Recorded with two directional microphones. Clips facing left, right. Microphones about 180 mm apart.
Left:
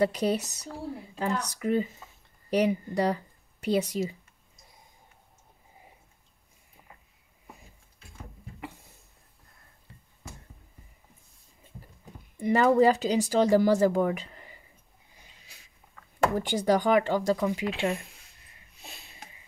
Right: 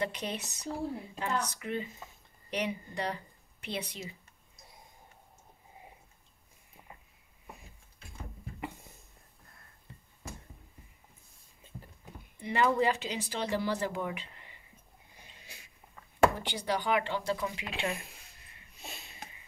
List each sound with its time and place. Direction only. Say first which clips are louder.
0.0 s speech: left 10 dB; 40° left (ahead or behind)
12.4 s speech: left 7 dB; 45° left (ahead or behind)
16.3 s speech: left 9 dB; 45° left (ahead or behind)
18.8 s sniff: right 2 dB; centre (ahead or behind)